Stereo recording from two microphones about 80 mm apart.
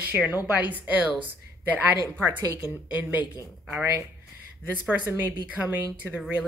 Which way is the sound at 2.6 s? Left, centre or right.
Centre.